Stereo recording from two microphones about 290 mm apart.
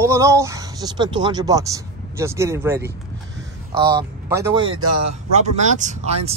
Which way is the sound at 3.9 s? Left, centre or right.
Centre.